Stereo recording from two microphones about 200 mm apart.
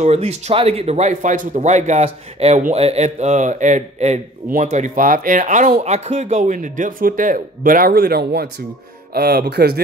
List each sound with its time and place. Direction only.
0.0 s speech: 35° right (ahead or behind); by 9.8 s 55° right (ahead or behind)